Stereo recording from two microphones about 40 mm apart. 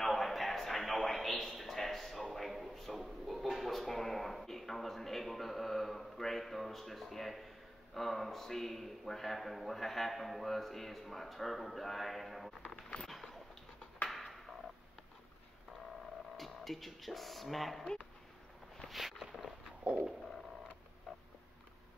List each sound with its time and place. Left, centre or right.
0.0 s a sound: centre
7.9 s a man's voice: centre
13.1 s dog: centre
14.0 s a sound: centre
16.3 s speech: centre
18.9 s walk: centre
19.8 s stomach rumble: right